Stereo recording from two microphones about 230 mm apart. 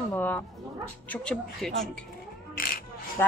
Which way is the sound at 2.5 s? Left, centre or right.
Left.